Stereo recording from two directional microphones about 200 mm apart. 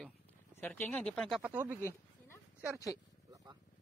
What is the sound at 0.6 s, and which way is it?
Speech, 10° left (ahead or behind).